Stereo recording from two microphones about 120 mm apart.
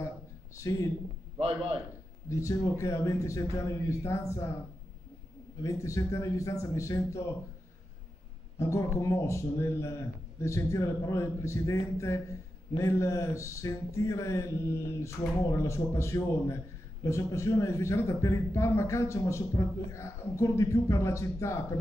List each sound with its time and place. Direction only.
0.6 s speech: 25° left (ahead or behind)
2.8 s speech: 25° left (ahead or behind)
5.6 s speech: 25° left (ahead or behind)
8.5 s speech: 25° left (ahead or behind)